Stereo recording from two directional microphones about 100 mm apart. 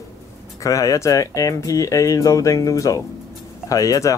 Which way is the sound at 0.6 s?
35° left (ahead or behind).